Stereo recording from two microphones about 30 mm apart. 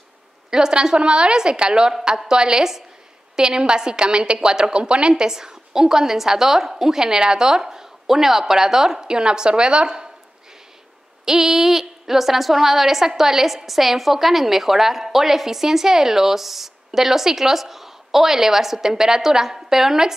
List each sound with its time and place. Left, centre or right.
0.5 s a woman's voice: right
0.9 s a woman's voice: right
5.1 s a woman's voice: centre
11.2 s a woman's voice: centre